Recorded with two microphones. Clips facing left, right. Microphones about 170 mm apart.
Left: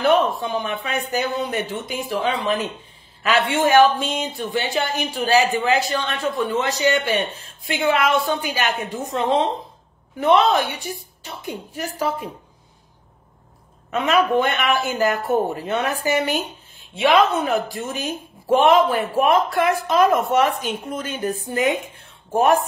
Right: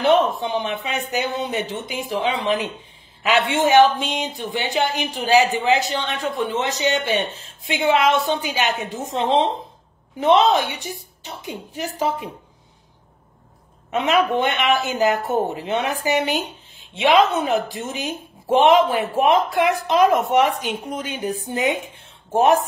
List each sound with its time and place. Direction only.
0.0 s a man's voice: 20° right (ahead or behind)
13.8 s a woman's voice: 20° right (ahead or behind)